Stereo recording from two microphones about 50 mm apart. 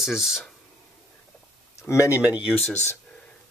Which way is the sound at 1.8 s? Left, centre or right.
Left.